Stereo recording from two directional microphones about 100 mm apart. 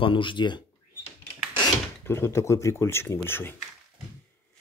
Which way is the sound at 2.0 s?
25° left (ahead or behind).